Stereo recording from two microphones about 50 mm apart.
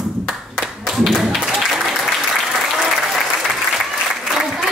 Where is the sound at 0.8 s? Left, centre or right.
Centre.